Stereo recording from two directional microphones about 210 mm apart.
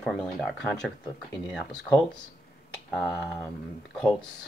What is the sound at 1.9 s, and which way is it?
Speech, 15° left (ahead or behind).